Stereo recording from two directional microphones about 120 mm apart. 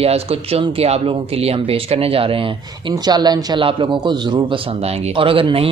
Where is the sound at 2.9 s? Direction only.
35° right (ahead or behind).